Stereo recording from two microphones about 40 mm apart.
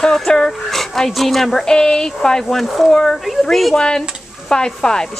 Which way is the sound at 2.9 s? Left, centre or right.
Centre.